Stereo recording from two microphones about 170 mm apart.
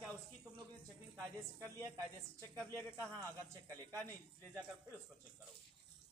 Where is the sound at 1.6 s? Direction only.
20° right (ahead or behind).